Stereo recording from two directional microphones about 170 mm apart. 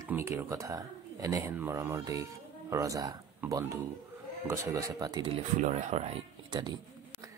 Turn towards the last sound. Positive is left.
turn(degrees=-25)  # may be behind; listen again after turning